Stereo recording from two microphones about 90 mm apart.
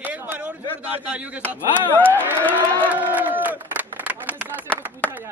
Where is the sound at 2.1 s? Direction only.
25° right (ahead or behind).